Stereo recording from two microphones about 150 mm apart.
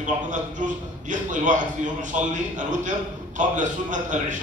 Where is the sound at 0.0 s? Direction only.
55° right (ahead or behind).